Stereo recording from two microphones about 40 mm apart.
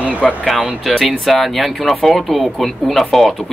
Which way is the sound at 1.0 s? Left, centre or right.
Centre.